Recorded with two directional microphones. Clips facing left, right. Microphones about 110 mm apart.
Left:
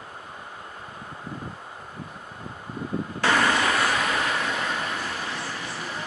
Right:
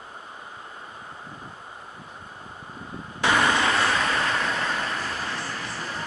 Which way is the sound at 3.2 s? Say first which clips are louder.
Right 1 dB; 30° right (ahead or behind).